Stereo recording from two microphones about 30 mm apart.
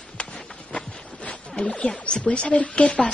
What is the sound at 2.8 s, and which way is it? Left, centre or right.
Speech, left.